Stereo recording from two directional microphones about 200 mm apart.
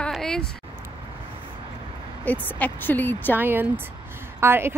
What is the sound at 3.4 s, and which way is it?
Speech, 10° right (ahead or behind).